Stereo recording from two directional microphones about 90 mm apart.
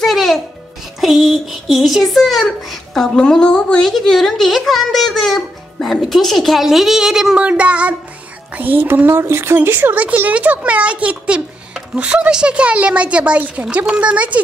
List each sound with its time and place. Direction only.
0.0 s music: centre (ahead or behind)
1.0 s a child's voice: centre (ahead or behind)